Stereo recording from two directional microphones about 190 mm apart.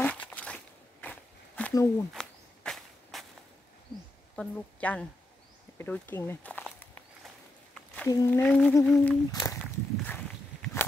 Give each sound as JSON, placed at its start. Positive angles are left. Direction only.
{"t": 0.0, "sound": "a sound", "side_deg": 5}
{"t": 1.0, "sound": "crackle", "side_deg": 10}
{"t": 1.7, "sound": "a woman's voice", "side_deg": 20}
{"t": 2.1, "sound": "walk", "side_deg": 0}
{"t": 4.4, "sound": "a woman's voice", "side_deg": 5}
{"t": 5.8, "sound": "walk", "side_deg": 10}
{"t": 7.7, "sound": "a sound", "side_deg": 5}
{"t": 8.1, "sound": "speech", "side_deg": 20}
{"t": 8.4, "sound": "humming", "side_deg": 5}
{"t": 8.9, "sound": "walk", "side_deg": 15}